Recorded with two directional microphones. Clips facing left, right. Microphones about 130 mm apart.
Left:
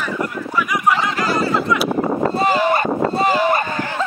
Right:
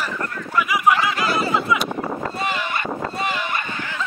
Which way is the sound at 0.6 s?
5° right (ahead or behind).